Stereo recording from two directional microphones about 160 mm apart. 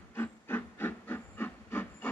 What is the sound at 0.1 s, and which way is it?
Hiss, 15° left (ahead or behind).